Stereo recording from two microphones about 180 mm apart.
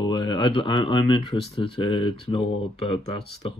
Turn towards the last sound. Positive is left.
turn(degrees=30)  # may be behind; listen again after turning